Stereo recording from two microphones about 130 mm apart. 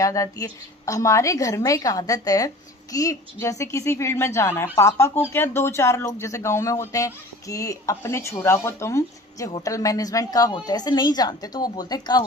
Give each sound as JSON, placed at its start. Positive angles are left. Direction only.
{"t": 0.0, "sound": "a woman's voice", "side_deg": 25}